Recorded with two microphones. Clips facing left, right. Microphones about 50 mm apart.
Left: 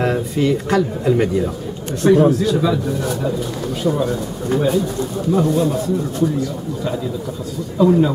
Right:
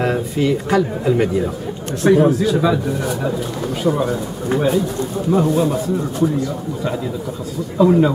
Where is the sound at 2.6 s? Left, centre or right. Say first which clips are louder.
Right 1 dB; centre.